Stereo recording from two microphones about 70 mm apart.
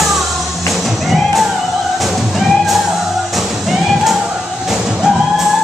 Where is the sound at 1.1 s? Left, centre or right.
Centre.